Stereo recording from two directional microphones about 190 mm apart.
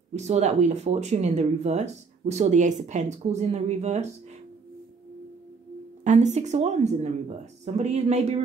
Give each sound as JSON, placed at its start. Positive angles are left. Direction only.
{"t": 0.1, "sound": "speech", "side_deg": -35}
{"t": 6.0, "sound": "speech", "side_deg": -35}